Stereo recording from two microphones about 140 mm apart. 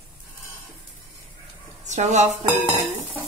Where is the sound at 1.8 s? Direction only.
55° right (ahead or behind).